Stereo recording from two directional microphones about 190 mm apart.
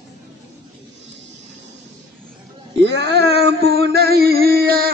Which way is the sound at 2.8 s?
65° right (ahead or behind).